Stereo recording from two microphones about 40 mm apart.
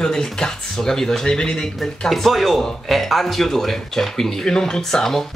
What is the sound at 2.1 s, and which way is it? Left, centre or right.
Speech, centre.